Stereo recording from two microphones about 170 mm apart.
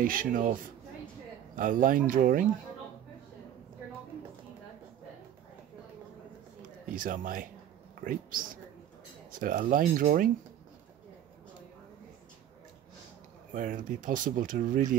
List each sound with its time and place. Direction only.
0.0 s speech: 55° right (ahead or behind)
6.9 s speech: 55° right (ahead or behind)
13.5 s speech: 50° right (ahead or behind)